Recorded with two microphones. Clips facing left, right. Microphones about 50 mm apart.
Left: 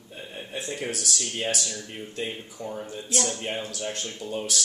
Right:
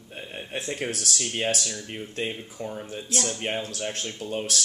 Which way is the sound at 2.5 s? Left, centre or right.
Right.